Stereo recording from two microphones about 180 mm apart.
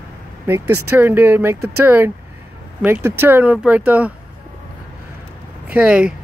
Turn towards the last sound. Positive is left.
turn(degrees=-5)  # may be behind; listen again after turning